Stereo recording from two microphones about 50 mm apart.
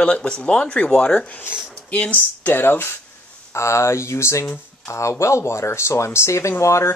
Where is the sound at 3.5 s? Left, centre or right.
Left.